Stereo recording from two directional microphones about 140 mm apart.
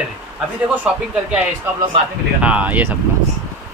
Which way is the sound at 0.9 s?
5° right (ahead or behind).